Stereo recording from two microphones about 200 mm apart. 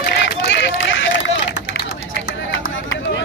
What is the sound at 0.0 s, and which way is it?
Run, 60° left (ahead or behind).